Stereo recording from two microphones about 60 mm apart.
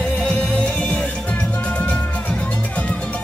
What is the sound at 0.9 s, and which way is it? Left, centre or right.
Music, left.